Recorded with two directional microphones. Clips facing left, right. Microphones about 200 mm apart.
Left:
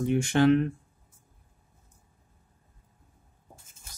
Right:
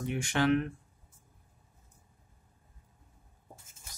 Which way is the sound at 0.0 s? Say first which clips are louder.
Left 7 dB; 30° left (ahead or behind).